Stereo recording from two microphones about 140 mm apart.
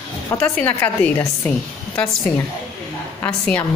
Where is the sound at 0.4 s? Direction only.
10° left (ahead or behind).